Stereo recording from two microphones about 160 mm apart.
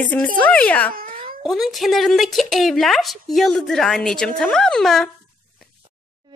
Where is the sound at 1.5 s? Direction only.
Centre (ahead or behind).